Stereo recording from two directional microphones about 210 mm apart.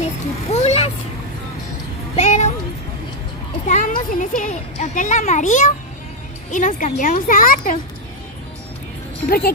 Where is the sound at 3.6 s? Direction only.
35° left (ahead or behind).